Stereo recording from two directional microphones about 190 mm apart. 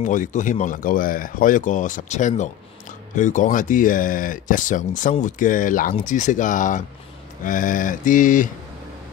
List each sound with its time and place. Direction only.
0.0 s speech: 40° left (ahead or behind)